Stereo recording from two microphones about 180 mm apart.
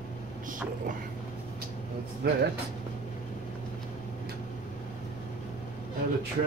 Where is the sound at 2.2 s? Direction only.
65° right (ahead or behind).